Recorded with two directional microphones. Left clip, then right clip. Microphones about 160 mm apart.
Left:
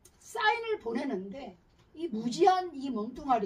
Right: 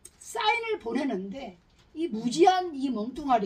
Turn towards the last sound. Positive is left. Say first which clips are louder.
# right 4 dB
turn(degrees=-15)  # may be behind; listen again after turning